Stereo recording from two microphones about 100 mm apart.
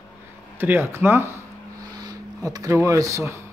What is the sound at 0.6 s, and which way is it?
Speech, 20° right (ahead or behind).